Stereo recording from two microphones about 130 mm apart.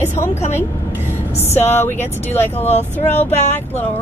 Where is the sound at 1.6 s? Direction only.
15° left (ahead or behind).